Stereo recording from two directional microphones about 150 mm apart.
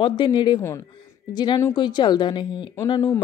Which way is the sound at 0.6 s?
15° left (ahead or behind).